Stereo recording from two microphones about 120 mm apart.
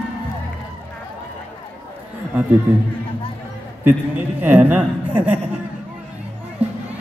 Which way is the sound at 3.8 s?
15° right (ahead or behind).